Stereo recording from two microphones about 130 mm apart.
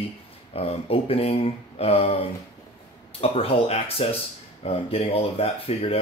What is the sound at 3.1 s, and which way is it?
Speech, 50° left (ahead or behind).